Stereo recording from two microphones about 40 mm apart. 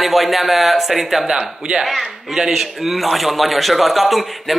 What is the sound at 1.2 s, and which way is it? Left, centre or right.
Speech, right.